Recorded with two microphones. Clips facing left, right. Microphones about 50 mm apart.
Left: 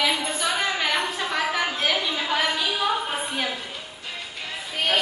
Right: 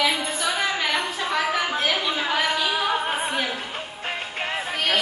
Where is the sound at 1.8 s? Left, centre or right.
Centre.